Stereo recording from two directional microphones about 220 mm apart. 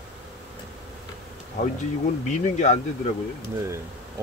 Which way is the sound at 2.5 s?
30° left (ahead or behind).